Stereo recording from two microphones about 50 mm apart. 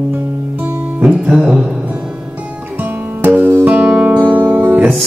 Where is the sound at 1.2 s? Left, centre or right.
Centre.